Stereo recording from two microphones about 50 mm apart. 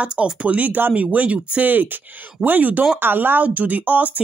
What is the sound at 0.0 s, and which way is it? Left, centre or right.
Speech, right.